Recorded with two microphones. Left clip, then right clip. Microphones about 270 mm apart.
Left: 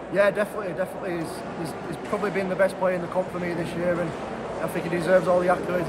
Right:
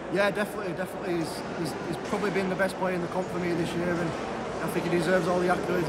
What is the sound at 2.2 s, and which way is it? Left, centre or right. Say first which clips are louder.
Speech: left 5 dB; centre.